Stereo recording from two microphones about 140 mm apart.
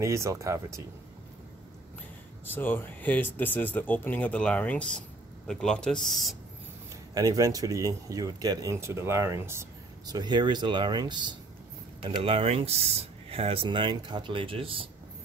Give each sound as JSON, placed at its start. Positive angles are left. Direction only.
{"t": 0.0, "sound": "speech", "side_deg": -20}
{"t": 2.4, "sound": "speech", "side_deg": 15}
{"t": 7.2, "sound": "speech", "side_deg": -25}